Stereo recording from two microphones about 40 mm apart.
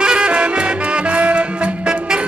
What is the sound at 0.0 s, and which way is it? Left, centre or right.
Music, centre.